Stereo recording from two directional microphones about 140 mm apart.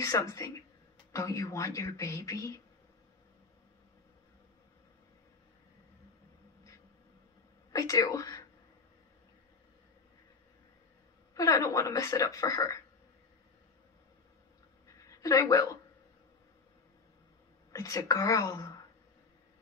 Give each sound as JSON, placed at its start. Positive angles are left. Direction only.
{"t": 0.0, "sound": "speech", "side_deg": 20}
{"t": 7.7, "sound": "a woman's voice", "side_deg": 25}
{"t": 11.3, "sound": "speech", "side_deg": 25}
{"t": 15.0, "sound": "a woman's voice", "side_deg": 25}
{"t": 17.7, "sound": "speech", "side_deg": 25}